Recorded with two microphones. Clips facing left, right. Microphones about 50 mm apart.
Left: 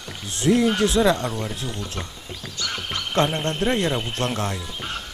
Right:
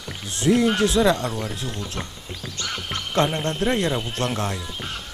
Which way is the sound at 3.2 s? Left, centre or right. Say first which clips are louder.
Even; centre.